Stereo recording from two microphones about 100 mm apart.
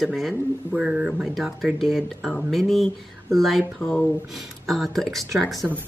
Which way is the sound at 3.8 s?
20° left (ahead or behind).